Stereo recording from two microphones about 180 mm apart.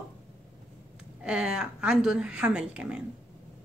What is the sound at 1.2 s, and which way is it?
Speech, 5° right (ahead or behind).